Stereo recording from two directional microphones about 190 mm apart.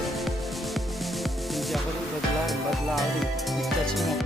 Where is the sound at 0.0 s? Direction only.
Centre (ahead or behind).